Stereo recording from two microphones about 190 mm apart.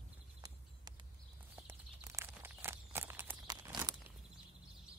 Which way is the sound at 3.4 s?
20° right (ahead or behind).